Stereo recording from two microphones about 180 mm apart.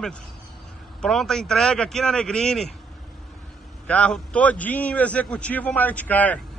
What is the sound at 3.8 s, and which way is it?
A man's voice, 5° left (ahead or behind).